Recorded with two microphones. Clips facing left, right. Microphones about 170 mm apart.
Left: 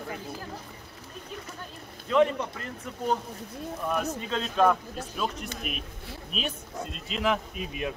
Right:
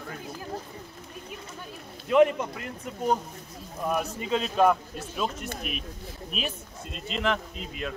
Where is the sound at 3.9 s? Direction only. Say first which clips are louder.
Right 3 dB; 10° right (ahead or behind).